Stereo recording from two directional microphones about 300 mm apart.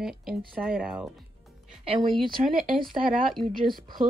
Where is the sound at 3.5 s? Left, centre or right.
Right.